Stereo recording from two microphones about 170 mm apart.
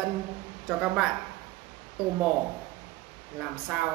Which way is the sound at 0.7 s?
5° right (ahead or behind).